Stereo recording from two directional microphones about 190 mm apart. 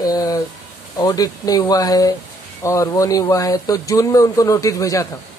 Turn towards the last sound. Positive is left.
turn(degrees=15)  # may be behind; listen again after turning